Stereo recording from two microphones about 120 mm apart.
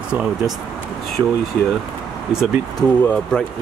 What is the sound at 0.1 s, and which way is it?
Speech, 5° right (ahead or behind).